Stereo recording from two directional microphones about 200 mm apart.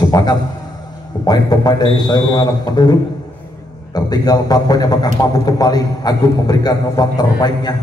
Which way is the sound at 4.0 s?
20° left (ahead or behind).